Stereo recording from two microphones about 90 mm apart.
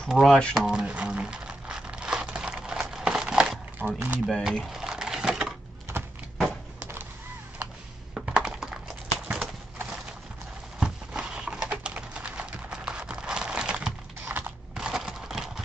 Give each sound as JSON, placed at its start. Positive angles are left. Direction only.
{"t": 0.1, "sound": "speech", "side_deg": 0}
{"t": 0.6, "sound": "crumpling", "side_deg": -10}
{"t": 3.8, "sound": "speech", "side_deg": -20}
{"t": 4.3, "sound": "speech", "side_deg": -5}
{"t": 4.7, "sound": "a sound", "side_deg": -5}
{"t": 8.1, "sound": "typing", "side_deg": -10}
{"t": 10.8, "sound": "typing", "side_deg": -10}
{"t": 14.3, "sound": "a sound", "side_deg": -25}
{"t": 14.7, "sound": "a sound", "side_deg": -5}